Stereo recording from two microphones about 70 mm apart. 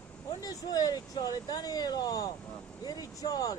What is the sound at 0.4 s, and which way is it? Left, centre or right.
Speech, left.